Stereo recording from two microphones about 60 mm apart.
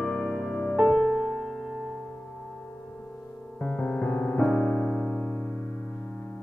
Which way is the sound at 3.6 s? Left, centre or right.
Left.